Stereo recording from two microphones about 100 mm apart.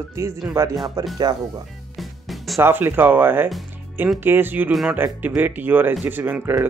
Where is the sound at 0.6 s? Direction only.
30° right (ahead or behind).